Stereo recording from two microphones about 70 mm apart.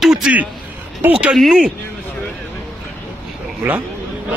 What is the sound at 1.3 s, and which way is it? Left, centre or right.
Speech, centre.